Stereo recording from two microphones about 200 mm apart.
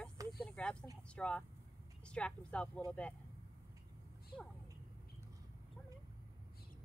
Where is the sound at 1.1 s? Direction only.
5° left (ahead or behind).